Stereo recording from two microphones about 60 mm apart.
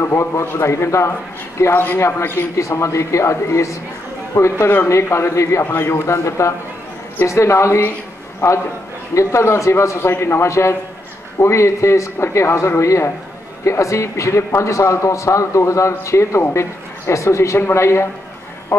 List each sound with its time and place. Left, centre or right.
0.0 s a man's voice: left